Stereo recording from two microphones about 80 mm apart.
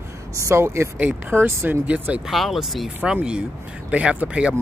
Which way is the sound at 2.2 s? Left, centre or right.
Centre.